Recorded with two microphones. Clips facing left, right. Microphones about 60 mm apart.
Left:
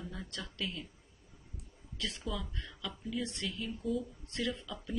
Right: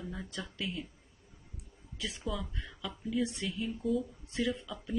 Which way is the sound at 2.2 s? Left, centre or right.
Centre.